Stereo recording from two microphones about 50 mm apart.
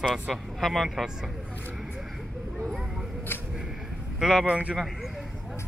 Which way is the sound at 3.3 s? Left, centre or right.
Left.